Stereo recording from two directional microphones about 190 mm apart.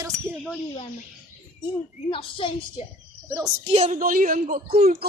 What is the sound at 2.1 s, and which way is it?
Speech, 30° left (ahead or behind).